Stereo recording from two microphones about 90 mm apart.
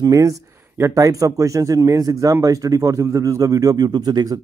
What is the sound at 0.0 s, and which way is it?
Speech, 40° right (ahead or behind).